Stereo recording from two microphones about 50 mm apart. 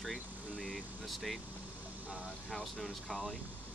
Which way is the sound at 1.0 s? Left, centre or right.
Centre.